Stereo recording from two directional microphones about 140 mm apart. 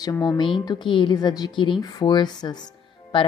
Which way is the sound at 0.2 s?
35° left (ahead or behind).